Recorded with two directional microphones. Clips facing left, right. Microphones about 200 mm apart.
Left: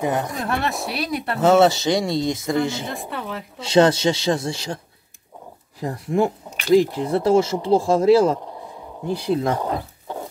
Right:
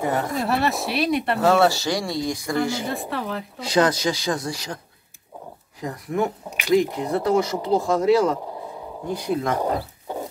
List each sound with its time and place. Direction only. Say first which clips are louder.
0.0 s speech: left 1 dB; 15° left (ahead or behind)
0.4 s speech: right 2 dB; centre (ahead or behind)
1.4 s speech: left 5 dB; 20° left (ahead or behind)
2.9 s speech: right 2 dB; centre (ahead or behind)
3.5 s speech: left 5 dB; 25° left (ahead or behind)
5.8 s speech: left 4 dB; 30° left (ahead or behind)